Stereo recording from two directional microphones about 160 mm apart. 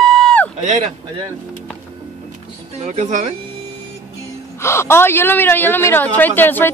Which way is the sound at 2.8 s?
45° right (ahead or behind).